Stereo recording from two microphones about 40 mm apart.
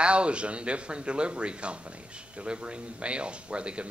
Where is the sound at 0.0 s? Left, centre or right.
Right.